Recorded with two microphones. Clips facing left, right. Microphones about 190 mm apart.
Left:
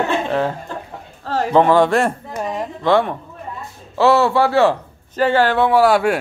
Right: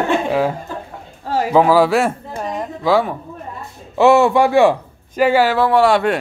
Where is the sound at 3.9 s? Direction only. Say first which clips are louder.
Right 3 dB; 15° right (ahead or behind).